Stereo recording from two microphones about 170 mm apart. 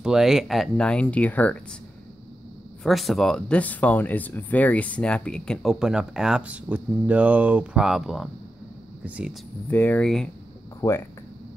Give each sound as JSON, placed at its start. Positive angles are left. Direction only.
{"t": 0.0, "sound": "speech", "side_deg": -5}
{"t": 2.8, "sound": "speech", "side_deg": 0}
{"t": 9.7, "sound": "speech", "side_deg": 10}
{"t": 10.8, "sound": "speech", "side_deg": 20}